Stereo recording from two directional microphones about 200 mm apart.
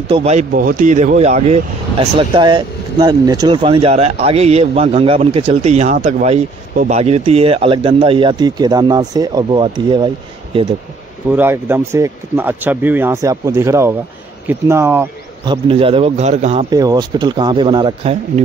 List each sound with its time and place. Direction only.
0.1 s speech: 35° right (ahead or behind)
11.3 s speech: 10° right (ahead or behind)
15.4 s speech: 25° right (ahead or behind)
16.7 s speech: 20° right (ahead or behind)